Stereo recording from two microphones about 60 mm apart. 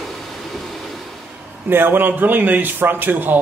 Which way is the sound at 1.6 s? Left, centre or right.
Right.